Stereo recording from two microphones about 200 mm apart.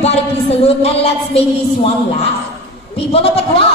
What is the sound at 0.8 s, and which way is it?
Speech, 30° left (ahead or behind).